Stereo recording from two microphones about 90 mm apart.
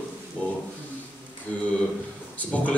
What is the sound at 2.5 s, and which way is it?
Speech, 15° left (ahead or behind).